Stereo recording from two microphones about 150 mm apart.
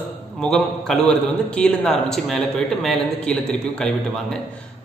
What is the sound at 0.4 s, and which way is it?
A man's voice, 5° left (ahead or behind).